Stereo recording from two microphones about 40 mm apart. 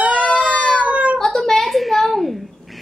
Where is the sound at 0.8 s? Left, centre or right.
Right.